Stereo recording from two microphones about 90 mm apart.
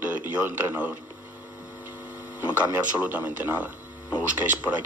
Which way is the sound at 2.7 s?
20° right (ahead or behind).